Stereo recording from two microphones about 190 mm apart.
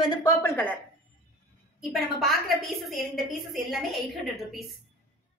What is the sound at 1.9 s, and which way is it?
A woman's voice, centre (ahead or behind).